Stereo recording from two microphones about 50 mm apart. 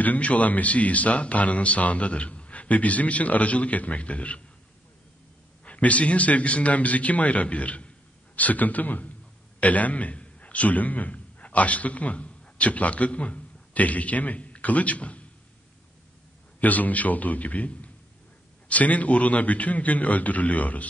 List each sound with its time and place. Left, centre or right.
0.0 s a man's voice: left
5.7 s a man's voice: left
16.5 s a man's voice: left